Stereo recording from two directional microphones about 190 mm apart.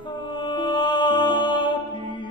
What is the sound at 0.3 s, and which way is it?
Music, 25° left (ahead or behind).